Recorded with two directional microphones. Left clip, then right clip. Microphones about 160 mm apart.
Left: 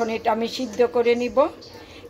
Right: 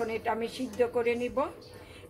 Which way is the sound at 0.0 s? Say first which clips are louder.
Left 8 dB; 45° left (ahead or behind).